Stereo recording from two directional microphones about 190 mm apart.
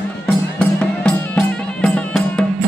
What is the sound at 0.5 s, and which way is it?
Music, 5° left (ahead or behind).